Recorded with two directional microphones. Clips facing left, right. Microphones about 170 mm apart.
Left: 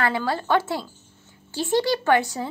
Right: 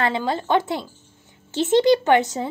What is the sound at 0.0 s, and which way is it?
A woman's voice, 20° right (ahead or behind).